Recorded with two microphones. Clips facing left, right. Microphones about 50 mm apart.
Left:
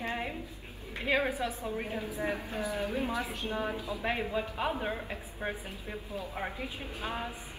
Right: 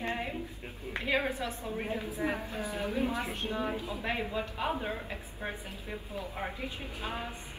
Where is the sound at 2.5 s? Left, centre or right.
Left.